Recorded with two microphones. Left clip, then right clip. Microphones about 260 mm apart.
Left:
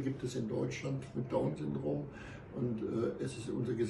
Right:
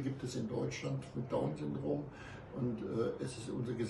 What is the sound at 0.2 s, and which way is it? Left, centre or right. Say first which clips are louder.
A man's voice: left 2 dB; centre.